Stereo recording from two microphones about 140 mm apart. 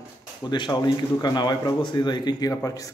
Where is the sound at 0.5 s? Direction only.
35° left (ahead or behind).